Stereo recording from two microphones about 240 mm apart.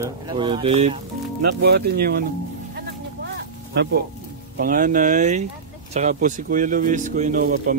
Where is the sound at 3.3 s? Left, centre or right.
Right.